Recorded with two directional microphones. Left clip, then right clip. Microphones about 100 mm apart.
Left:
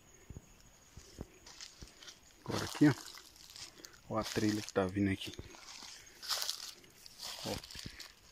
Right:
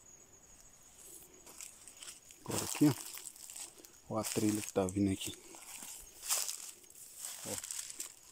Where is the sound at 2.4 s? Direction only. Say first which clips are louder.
Left 1 dB; 5° right (ahead or behind).